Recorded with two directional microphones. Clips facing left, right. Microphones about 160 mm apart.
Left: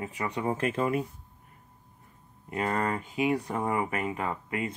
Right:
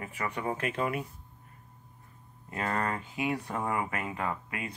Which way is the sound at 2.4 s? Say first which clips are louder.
Left 3 dB; 20° left (ahead or behind).